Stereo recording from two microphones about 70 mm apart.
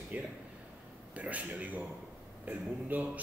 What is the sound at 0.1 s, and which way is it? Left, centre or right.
A man's voice, right.